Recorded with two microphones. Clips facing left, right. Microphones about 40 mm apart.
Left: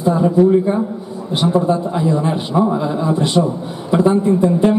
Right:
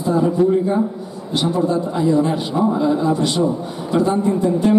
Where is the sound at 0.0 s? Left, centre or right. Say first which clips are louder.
Left 3 dB; centre.